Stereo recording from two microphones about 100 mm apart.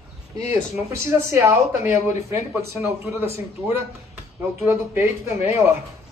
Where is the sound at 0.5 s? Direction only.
25° right (ahead or behind).